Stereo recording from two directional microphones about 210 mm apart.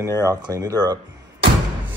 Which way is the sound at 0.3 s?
15° right (ahead or behind).